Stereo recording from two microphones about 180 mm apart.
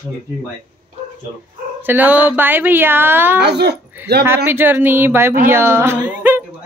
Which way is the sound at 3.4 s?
65° right (ahead or behind).